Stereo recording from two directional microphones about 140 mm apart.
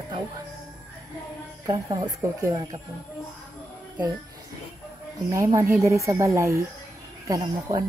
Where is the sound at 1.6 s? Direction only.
30° right (ahead or behind).